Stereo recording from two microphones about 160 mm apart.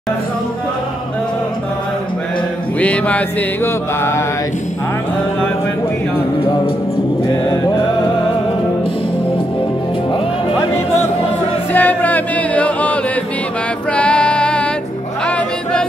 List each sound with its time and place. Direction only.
2.8 s mantra: 10° left (ahead or behind)
6.4 s music: 35° left (ahead or behind)
11.7 s music: 10° left (ahead or behind)